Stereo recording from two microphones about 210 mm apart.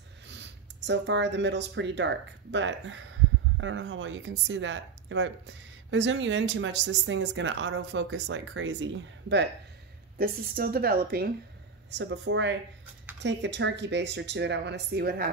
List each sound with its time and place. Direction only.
0.3 s speech: 55° right (ahead or behind)
10.1 s a woman's voice: 45° right (ahead or behind)
12.0 s speech: 60° right (ahead or behind)